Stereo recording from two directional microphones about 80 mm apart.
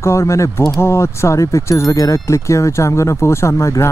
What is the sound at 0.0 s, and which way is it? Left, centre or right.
Speech, left.